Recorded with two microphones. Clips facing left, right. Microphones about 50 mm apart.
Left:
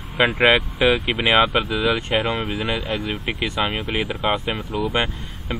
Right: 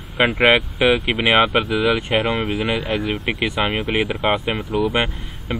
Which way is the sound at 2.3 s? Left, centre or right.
Centre.